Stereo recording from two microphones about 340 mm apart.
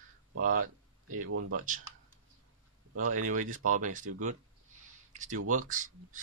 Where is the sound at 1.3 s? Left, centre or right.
Right.